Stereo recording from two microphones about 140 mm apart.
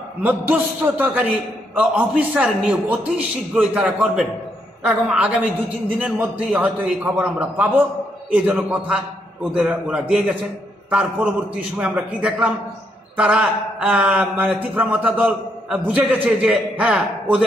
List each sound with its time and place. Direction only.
0.2 s a man's voice: 10° right (ahead or behind)